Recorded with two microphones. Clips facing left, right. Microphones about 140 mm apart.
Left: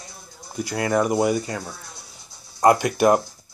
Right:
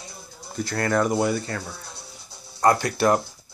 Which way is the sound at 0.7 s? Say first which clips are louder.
Left 1 dB; 15° left (ahead or behind).